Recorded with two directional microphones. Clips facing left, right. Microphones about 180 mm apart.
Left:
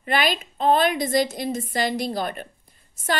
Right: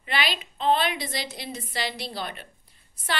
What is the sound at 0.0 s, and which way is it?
A woman's voice, 45° left (ahead or behind).